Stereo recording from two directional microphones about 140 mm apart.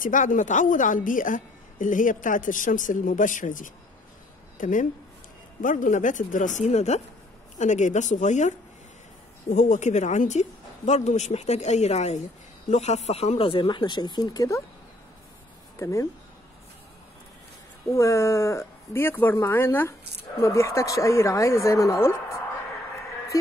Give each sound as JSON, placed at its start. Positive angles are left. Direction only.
{"t": 0.0, "sound": "a woman's voice", "side_deg": 70}
{"t": 15.8, "sound": "speech", "side_deg": 20}
{"t": 17.8, "sound": "speech", "side_deg": 20}